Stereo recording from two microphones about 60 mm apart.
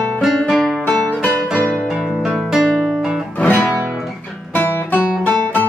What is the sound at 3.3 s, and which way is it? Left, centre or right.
Music, left.